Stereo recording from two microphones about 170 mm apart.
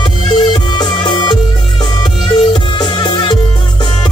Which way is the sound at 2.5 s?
25° left (ahead or behind).